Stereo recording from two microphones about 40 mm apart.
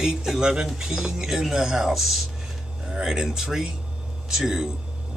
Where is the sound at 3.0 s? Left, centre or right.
Centre.